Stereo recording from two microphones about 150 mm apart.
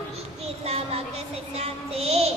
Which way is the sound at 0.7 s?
45° right (ahead or behind).